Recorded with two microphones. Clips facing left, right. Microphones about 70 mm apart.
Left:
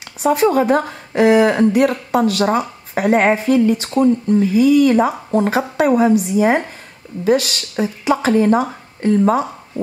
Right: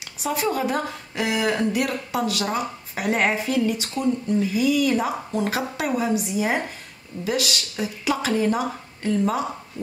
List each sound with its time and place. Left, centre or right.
0.2 s speech: left